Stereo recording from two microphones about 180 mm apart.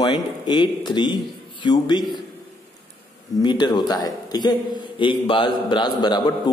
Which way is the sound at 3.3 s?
25° left (ahead or behind).